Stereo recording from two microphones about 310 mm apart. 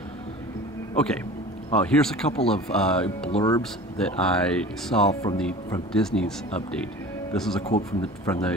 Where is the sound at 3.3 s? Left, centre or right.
Centre.